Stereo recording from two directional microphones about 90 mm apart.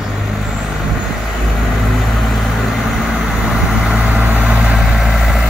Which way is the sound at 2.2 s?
Centre (ahead or behind).